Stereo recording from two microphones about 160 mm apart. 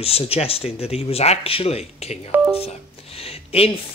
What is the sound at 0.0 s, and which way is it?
Speech, 40° left (ahead or behind).